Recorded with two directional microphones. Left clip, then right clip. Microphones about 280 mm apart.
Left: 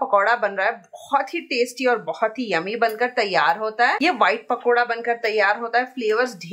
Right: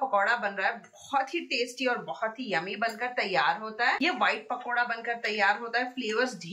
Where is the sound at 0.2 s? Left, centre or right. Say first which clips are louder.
Left 7 dB; centre.